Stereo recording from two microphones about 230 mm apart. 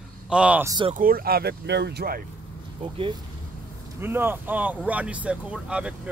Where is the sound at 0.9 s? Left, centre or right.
Right.